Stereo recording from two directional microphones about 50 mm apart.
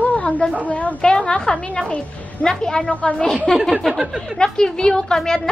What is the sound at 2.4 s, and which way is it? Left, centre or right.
Speech, centre.